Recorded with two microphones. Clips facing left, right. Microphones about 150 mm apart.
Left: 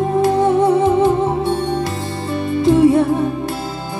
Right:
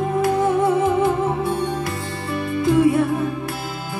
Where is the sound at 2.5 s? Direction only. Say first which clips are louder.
Left 5 dB; 25° left (ahead or behind).